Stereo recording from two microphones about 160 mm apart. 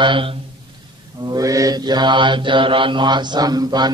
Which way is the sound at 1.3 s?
20° right (ahead or behind).